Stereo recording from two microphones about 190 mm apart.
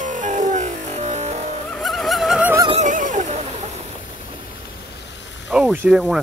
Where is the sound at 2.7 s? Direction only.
40° right (ahead or behind).